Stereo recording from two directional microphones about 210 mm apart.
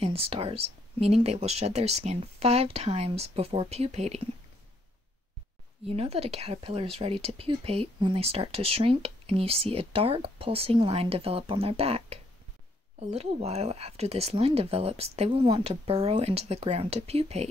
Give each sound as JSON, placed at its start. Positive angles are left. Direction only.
{"t": 0.0, "sound": "speech", "side_deg": -25}
{"t": 5.9, "sound": "speech", "side_deg": -30}